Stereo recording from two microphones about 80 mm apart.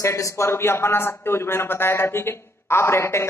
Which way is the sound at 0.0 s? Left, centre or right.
Left.